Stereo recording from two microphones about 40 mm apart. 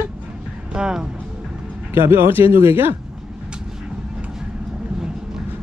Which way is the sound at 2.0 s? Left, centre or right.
Right.